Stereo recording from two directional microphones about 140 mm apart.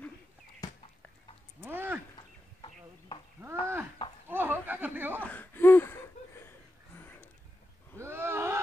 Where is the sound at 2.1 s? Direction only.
35° left (ahead or behind).